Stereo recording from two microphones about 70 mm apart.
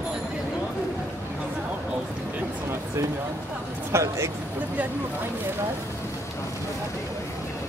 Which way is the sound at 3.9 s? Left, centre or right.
Right.